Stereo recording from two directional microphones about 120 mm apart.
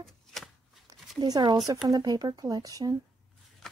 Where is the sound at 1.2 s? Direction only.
35° right (ahead or behind).